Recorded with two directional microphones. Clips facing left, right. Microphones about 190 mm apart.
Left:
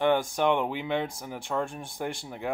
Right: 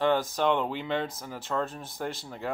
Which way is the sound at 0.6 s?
10° left (ahead or behind).